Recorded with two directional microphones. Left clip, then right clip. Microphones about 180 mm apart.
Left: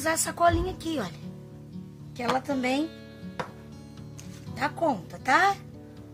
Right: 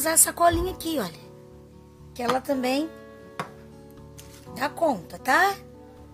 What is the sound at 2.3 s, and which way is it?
Speech, 30° right (ahead or behind).